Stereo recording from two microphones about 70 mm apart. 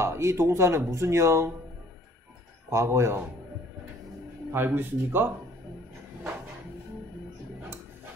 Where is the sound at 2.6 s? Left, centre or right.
Right.